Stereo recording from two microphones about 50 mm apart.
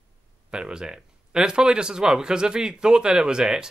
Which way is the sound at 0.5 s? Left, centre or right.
Centre.